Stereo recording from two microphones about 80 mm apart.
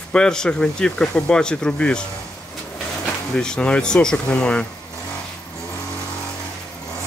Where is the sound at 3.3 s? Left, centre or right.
Centre.